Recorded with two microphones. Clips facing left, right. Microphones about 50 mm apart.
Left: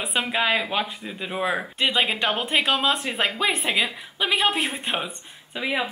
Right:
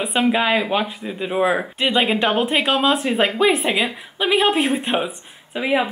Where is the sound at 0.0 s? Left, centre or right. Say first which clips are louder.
Right 6 dB; centre.